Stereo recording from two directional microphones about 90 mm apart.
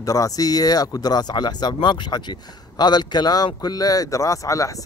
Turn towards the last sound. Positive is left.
turn(degrees=40)  # may be behind; listen again after turning